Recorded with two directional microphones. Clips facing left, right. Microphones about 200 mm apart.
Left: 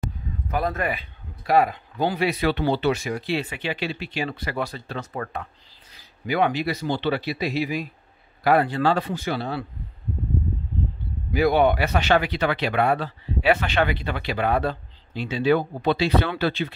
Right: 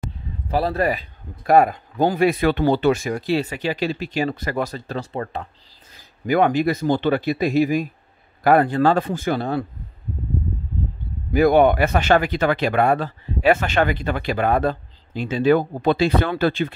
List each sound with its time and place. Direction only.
0.5 s speech: 30° right (ahead or behind)
5.1 s speech: 30° right (ahead or behind)
5.9 s speech: 45° right (ahead or behind)
11.3 s speech: 50° right (ahead or behind)